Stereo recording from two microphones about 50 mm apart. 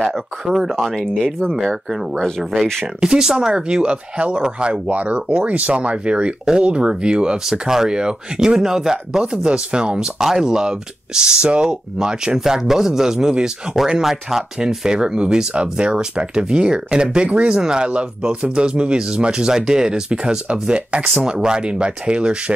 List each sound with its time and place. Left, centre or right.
0.5 s speech: centre
0.9 s speech: centre
1.5 s speech: centre
3.0 s speech: centre